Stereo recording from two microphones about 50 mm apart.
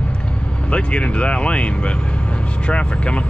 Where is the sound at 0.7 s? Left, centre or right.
Left.